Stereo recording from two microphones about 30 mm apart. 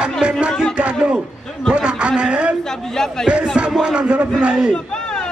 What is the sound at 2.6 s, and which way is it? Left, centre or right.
Speech, centre.